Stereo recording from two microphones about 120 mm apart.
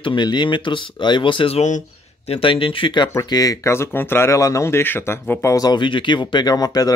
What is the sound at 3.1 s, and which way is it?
Speech, 30° left (ahead or behind).